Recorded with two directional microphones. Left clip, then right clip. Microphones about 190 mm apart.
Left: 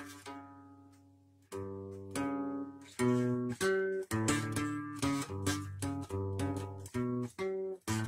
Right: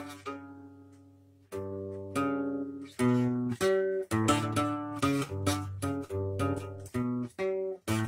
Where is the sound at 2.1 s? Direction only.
25° left (ahead or behind).